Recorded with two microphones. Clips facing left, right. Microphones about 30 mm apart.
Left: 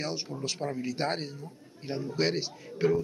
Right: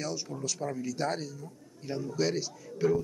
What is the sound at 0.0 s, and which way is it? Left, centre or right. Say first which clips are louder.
A man's voice: left 1 dB; left.